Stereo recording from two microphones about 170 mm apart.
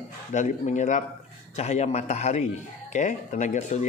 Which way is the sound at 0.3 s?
45° left (ahead or behind).